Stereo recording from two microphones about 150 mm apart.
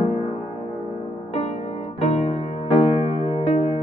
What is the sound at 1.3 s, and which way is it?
Music, 45° left (ahead or behind).